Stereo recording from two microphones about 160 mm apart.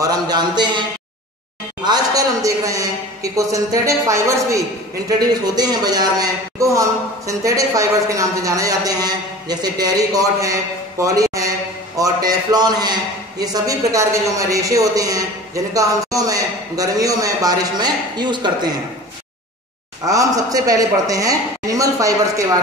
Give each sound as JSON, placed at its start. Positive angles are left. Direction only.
{"t": 0.0, "sound": "a man's voice", "side_deg": -25}
{"t": 1.9, "sound": "a man's voice", "side_deg": -20}
{"t": 11.0, "sound": "a sound", "side_deg": -20}
{"t": 12.0, "sound": "a man's voice", "side_deg": -25}
{"t": 20.1, "sound": "a man's voice", "side_deg": -20}